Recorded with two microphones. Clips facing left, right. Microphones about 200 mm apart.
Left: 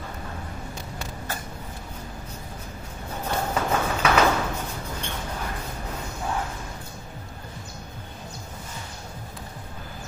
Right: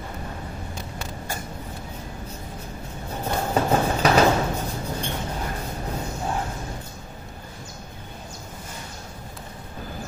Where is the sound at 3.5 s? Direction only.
35° right (ahead or behind).